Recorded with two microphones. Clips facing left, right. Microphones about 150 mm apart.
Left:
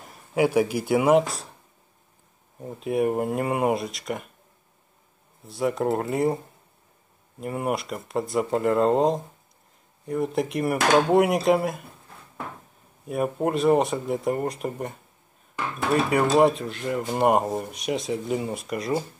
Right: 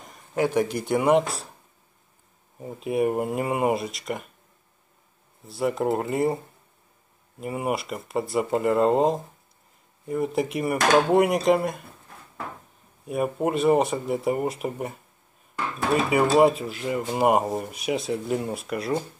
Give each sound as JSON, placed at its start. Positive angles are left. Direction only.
{"t": 0.0, "sound": "speech", "side_deg": 5}
{"t": 2.6, "sound": "speech", "side_deg": 0}
{"t": 5.5, "sound": "speech", "side_deg": 0}
{"t": 13.0, "sound": "speech", "side_deg": 0}